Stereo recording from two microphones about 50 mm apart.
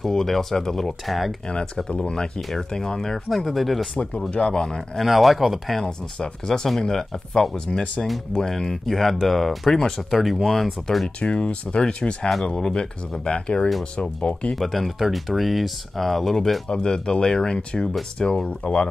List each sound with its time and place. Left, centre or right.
0.0 s speech: centre
1.0 s speech: centre
1.9 s speech: centre
3.9 s speech: left
4.9 s speech: centre
5.8 s speech: centre
11.1 s speech: left
14.5 s speech: centre
16.6 s speech: centre